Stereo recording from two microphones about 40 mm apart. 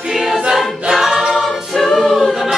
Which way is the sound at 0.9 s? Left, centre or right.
Centre.